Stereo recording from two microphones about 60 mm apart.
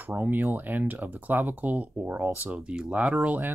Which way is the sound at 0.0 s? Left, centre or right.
Right.